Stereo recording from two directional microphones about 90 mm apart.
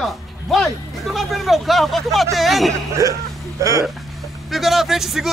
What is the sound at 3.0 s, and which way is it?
Speech, 35° right (ahead or behind).